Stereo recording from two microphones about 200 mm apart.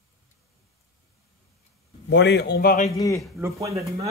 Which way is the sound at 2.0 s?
60° left (ahead or behind).